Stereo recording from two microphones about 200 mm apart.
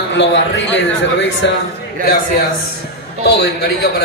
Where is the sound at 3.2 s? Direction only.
50° left (ahead or behind).